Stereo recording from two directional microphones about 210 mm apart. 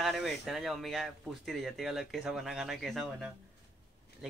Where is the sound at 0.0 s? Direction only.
Centre (ahead or behind).